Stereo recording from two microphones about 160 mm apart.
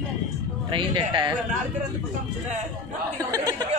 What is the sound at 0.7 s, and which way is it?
Speech, 30° right (ahead or behind).